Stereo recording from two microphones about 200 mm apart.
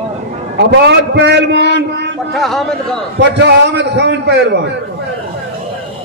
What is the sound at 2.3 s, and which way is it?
Speech, centre (ahead or behind).